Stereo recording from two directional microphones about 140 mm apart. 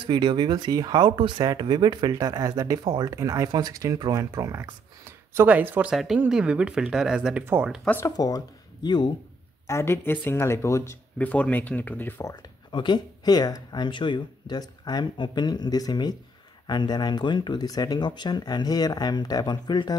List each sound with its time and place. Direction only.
0.0 s speech: 35° right (ahead or behind); by 7.7 s 10° right (ahead or behind)
7.8 s speech: 10° left (ahead or behind)
8.8 s speech: 30° left (ahead or behind)
9.7 s speech: 20° left (ahead or behind)